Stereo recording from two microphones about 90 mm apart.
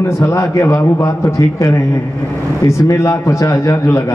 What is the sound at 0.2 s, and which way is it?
A man's voice, 35° left (ahead or behind).